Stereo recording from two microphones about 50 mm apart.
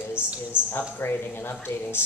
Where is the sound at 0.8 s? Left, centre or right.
Left.